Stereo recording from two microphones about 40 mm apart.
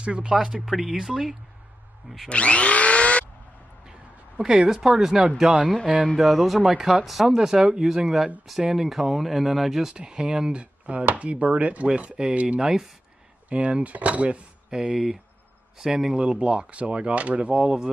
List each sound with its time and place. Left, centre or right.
0.0 s speech: right
0.7 s speech: centre
2.2 s power tool: left
4.4 s speech: centre
6.1 s speech: centre
6.7 s speech: centre
9.9 s speech: centre
12.5 s speech: centre
13.5 s speech: right
14.7 s speech: centre
16.3 s speech: right